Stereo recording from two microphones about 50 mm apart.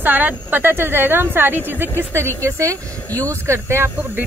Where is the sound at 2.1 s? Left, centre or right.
Right.